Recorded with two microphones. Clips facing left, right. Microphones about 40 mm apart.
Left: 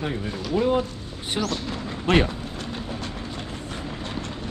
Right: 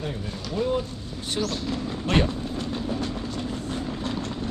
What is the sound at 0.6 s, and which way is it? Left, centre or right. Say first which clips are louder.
Speech: left 4 dB; left.